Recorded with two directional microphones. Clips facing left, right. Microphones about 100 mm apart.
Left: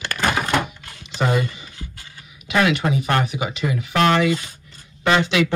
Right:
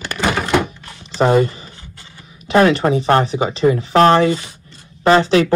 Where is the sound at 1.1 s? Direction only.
40° right (ahead or behind).